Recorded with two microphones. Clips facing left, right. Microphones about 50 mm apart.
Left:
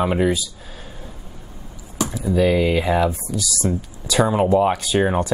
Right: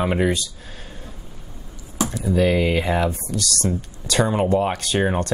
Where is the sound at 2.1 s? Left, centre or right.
Centre.